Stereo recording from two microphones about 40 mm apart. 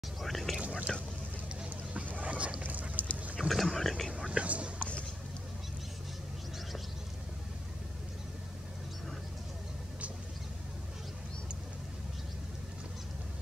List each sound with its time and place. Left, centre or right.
0.2 s speech: centre
0.6 s whispering: right
2.0 s boat: right
2.6 s duck: right
3.3 s a sound: centre
3.7 s whispering: centre
4.3 s whispering: right
4.7 s a sound: left